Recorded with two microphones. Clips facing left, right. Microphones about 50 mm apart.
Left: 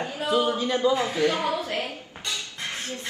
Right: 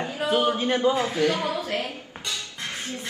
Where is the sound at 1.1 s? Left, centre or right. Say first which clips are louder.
Even; left.